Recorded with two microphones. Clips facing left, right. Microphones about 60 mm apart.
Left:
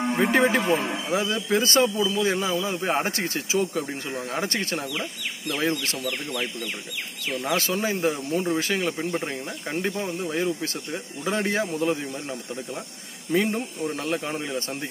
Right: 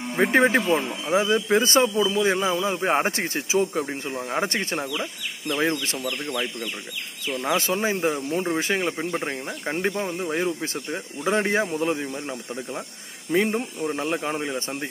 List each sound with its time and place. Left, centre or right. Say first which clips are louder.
0.2 s speech: right 3 dB; right
6.0 s speech: right 2 dB; right
7.3 s speech: right 2 dB; right